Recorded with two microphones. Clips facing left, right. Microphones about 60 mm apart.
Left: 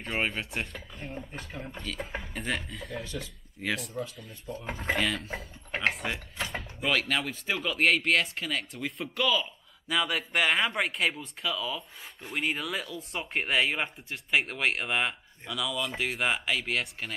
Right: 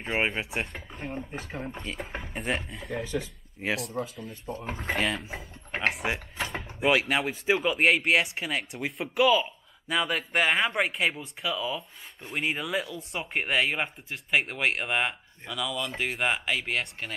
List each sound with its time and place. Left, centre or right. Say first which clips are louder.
0.0 s speech: right 3 dB; centre
0.7 s speech: right 3 dB; right
1.1 s speech: right 3 dB; centre
2.8 s speech: right 5 dB; centre
5.0 s speech: right 1 dB; centre